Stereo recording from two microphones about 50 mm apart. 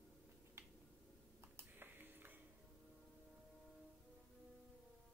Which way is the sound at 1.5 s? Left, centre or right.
Right.